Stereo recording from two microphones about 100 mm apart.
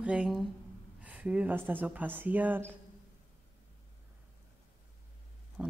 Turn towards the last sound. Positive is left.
turn(degrees=-5)  # may be behind; listen again after turning